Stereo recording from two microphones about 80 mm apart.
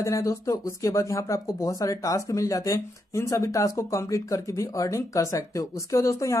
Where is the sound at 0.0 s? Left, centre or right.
Left.